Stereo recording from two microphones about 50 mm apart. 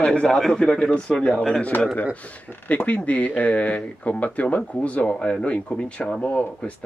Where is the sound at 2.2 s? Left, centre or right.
Left.